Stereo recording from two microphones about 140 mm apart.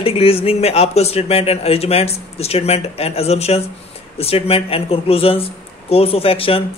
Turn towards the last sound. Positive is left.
turn(degrees=40)  # may be behind; listen again after turning